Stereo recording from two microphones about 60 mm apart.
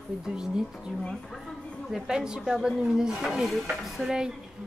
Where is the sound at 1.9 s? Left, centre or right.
Centre.